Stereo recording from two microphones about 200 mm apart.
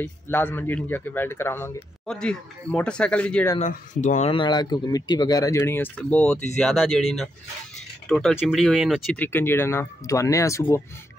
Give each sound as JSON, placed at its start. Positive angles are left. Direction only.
{"t": 0.0, "sound": "speech", "side_deg": 10}
{"t": 3.5, "sound": "speech", "side_deg": 40}
{"t": 8.1, "sound": "speech", "side_deg": 0}
{"t": 9.1, "sound": "speech", "side_deg": 10}